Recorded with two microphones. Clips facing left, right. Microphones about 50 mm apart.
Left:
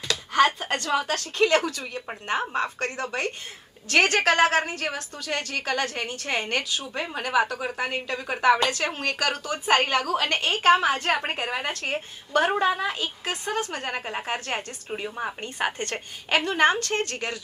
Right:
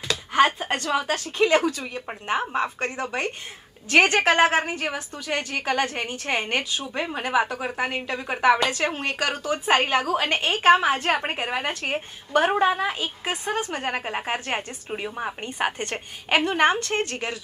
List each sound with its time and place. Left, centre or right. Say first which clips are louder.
0.1 s a woman's voice: right 1 dB; centre
10.9 s a woman's voice: right 1 dB; centre